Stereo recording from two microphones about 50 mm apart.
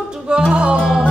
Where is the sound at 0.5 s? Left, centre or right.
Right.